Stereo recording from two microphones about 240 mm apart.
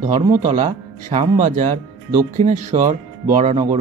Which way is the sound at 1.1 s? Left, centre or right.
Right.